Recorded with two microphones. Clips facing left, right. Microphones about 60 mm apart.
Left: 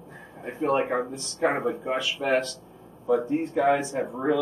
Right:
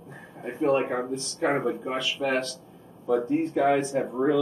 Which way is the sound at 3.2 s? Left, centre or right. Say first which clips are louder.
Even; centre.